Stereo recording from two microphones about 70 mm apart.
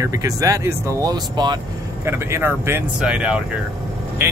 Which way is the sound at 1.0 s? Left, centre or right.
Right.